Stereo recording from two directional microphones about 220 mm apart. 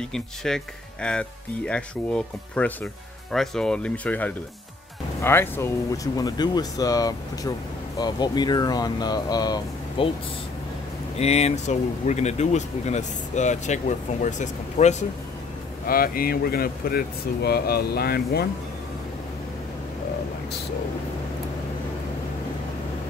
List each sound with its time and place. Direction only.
0.1 s speech: centre (ahead or behind); by 10.1 s 20° left (ahead or behind)
11.1 s speech: 30° left (ahead or behind)
15.9 s speech: 40° left (ahead or behind)